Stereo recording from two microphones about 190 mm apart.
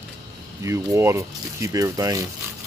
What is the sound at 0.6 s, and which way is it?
Speech, 15° right (ahead or behind).